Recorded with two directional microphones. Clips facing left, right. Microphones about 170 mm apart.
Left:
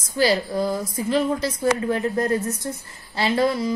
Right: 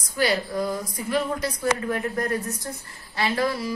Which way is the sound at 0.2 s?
30° left (ahead or behind).